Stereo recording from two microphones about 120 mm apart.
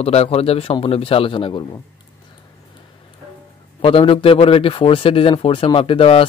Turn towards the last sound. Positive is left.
turn(degrees=50)  # may be behind; listen again after turning